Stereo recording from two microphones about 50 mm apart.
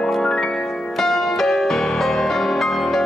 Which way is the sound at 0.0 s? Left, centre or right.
Centre.